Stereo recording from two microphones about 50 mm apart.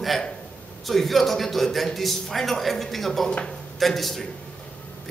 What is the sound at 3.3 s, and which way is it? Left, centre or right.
Speech, centre.